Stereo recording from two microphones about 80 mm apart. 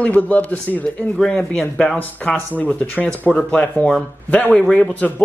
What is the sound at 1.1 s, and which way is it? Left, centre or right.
Speech, centre.